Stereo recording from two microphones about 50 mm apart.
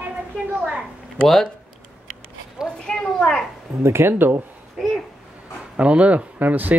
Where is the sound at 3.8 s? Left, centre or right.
Right.